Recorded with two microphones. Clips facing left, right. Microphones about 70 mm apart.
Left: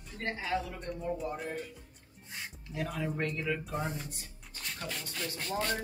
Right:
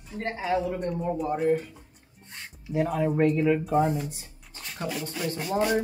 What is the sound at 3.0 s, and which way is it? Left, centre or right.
Speech, centre.